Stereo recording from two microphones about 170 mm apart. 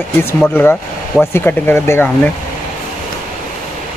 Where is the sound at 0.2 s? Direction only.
10° left (ahead or behind).